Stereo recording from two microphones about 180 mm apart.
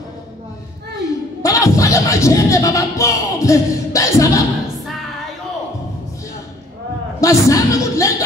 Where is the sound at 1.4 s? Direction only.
20° left (ahead or behind).